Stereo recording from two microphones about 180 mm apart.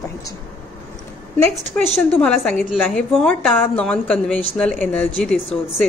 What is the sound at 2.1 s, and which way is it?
A woman's voice, 5° left (ahead or behind).